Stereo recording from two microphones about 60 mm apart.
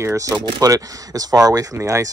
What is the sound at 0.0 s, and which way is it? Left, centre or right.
Speech, right.